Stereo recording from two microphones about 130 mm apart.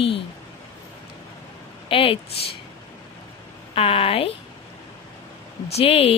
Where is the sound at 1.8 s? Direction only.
45° left (ahead or behind).